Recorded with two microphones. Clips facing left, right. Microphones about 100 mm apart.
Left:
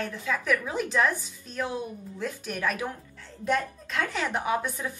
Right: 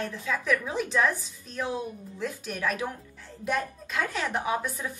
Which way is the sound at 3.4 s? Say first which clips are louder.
Left 2 dB; 10° right (ahead or behind).